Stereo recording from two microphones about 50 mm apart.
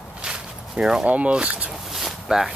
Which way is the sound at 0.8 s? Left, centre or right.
Centre.